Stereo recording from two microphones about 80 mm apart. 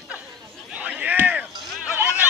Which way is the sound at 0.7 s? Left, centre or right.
Centre.